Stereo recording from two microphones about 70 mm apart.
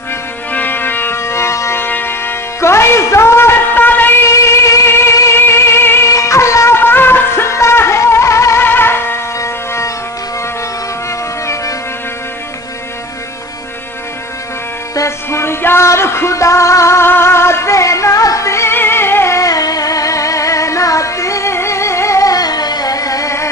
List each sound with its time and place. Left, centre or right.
0.5 s music: left
4.2 s music: left
6.0 s music: left
6.8 s music: left
8.6 s music: left
9.4 s a sound: left
15.0 s music: left